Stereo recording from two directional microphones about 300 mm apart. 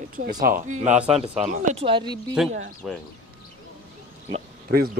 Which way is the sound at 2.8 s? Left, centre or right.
Centre.